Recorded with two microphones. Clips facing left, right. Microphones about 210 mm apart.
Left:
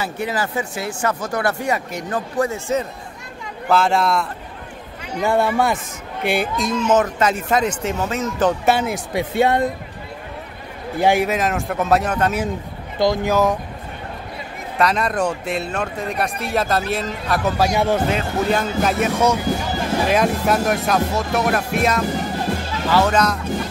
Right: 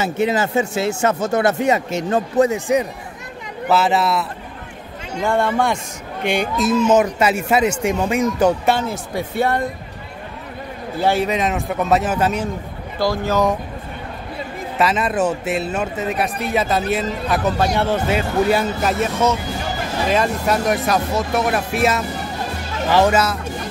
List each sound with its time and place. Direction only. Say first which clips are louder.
0.0 s speech: right 5 dB; 25° right (ahead or behind)
3.6 s speech: even; 5° right (ahead or behind)
5.2 s speech: even; 5° left (ahead or behind); by 8.5 s 10° right (ahead or behind)
8.6 s speech: left 1 dB; 10° left (ahead or behind)
11.0 s speech: left 1 dB; 15° left (ahead or behind)
11.2 s speech: right 1 dB; centre (ahead or behind)
13.0 s speech: left 2 dB; 15° left (ahead or behind)
14.8 s speech: right 1 dB; 5° right (ahead or behind)
17.6 s speech: even; 10° left (ahead or behind)
18.1 s speech: right 3 dB; 5° right (ahead or behind)